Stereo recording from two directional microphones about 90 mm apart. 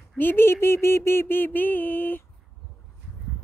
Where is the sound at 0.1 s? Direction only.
20° left (ahead or behind).